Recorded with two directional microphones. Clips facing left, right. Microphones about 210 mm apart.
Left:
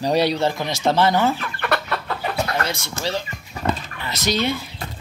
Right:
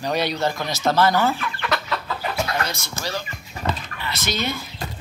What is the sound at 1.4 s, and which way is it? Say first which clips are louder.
Chicken: left 2 dB; 55° left (ahead or behind).